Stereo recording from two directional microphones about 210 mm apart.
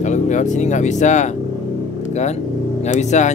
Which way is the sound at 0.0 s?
35° left (ahead or behind).